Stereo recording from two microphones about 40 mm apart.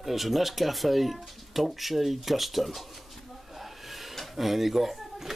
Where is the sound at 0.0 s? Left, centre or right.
Centre.